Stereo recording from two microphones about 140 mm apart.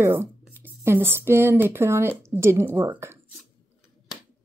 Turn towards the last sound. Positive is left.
turn(degrees=-15)  # may be behind; listen again after turning